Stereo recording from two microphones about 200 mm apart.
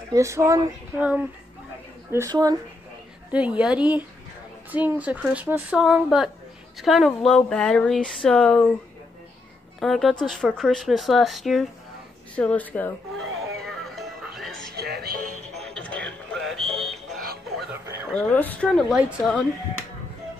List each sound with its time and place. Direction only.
0.1 s a woman's voice: 15° right (ahead or behind)
3.3 s a woman's voice: 5° right (ahead or behind)
9.8 s speech: centre (ahead or behind)
13.7 s music: centre (ahead or behind)
14.8 s music: 55° right (ahead or behind)
15.5 s music: 5° left (ahead or behind)
18.1 s speech: 10° left (ahead or behind)